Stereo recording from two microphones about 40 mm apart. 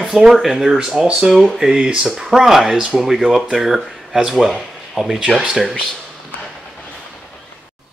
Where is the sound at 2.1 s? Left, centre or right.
Centre.